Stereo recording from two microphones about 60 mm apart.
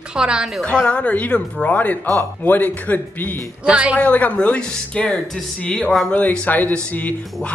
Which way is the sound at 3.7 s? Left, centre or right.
Right.